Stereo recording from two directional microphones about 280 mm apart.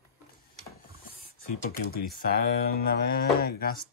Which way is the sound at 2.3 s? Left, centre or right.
Left.